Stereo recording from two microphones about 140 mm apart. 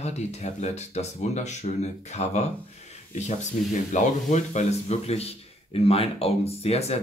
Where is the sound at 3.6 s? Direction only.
75° left (ahead or behind).